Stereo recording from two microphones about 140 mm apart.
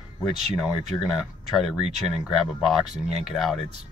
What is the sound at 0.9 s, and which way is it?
Speech, 20° left (ahead or behind).